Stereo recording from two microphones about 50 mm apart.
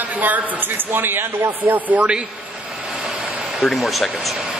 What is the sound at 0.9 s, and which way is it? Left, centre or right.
Speech, right.